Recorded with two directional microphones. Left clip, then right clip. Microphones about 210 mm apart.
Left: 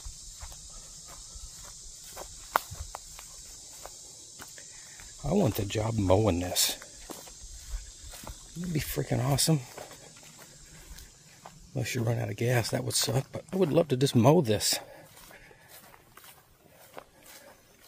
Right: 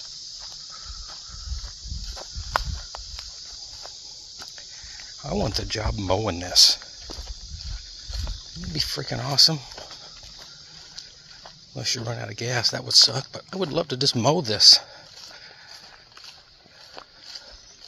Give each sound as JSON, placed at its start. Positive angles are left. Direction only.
{"t": 2.1, "sound": "walk", "side_deg": -50}
{"t": 5.2, "sound": "speech", "side_deg": 30}
{"t": 8.1, "sound": "a sound", "side_deg": -45}
{"t": 8.7, "sound": "speech", "side_deg": 30}
{"t": 11.7, "sound": "speech", "side_deg": 35}